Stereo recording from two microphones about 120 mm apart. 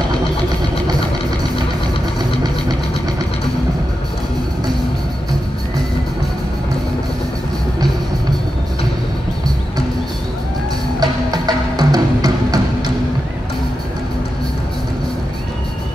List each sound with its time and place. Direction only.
11.0 s music: 35° right (ahead or behind)